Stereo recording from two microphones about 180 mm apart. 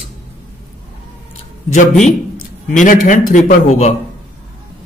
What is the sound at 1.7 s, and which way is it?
A man's voice, 40° left (ahead or behind).